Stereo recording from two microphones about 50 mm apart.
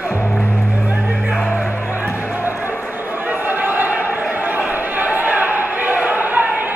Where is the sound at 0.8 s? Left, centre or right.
Right.